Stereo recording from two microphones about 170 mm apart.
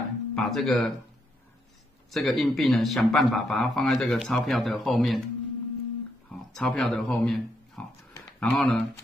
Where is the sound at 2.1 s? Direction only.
Centre (ahead or behind).